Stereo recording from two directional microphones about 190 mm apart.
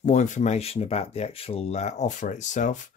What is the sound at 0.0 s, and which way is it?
Speech, 40° left (ahead or behind).